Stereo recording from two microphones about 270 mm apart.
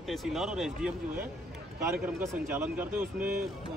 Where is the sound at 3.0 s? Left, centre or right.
Right.